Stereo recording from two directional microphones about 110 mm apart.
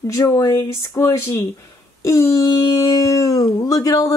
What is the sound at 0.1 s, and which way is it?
Speech, 30° left (ahead or behind).